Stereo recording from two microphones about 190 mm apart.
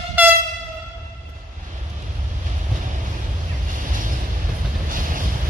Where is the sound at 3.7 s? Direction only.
45° right (ahead or behind).